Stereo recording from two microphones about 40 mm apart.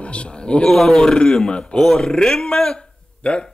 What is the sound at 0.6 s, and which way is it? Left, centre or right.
Speech, centre.